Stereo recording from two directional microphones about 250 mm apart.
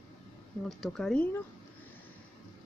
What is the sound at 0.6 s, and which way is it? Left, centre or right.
Speech, centre.